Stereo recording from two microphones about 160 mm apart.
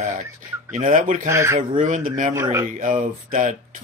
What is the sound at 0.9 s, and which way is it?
Speech, 55° right (ahead or behind).